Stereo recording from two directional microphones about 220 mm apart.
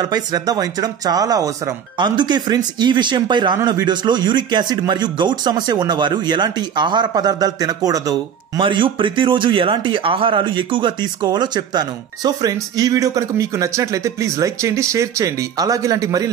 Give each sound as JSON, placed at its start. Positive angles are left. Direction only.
{"t": 0.0, "sound": "speech", "side_deg": -20}